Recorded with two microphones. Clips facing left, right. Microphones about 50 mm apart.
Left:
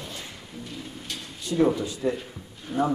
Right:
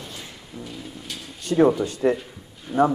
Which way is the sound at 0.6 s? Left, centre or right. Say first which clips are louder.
Right 2 dB; centre.